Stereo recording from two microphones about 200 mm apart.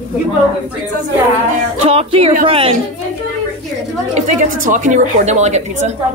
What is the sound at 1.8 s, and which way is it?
Music, 30° right (ahead or behind).